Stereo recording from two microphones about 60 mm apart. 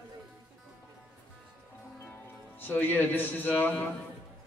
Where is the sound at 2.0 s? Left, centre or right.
Left.